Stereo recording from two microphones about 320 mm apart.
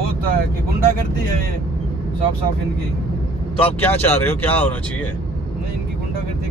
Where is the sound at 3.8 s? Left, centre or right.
Centre.